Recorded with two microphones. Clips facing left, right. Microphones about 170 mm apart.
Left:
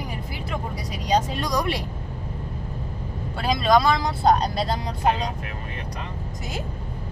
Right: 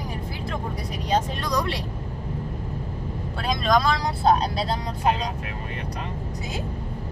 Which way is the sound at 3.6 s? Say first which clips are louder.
Left 3 dB; centre (ahead or behind).